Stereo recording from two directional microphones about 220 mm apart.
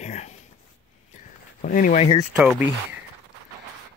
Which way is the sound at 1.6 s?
40° left (ahead or behind).